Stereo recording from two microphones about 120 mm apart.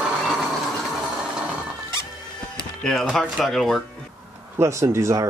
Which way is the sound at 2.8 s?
5° left (ahead or behind).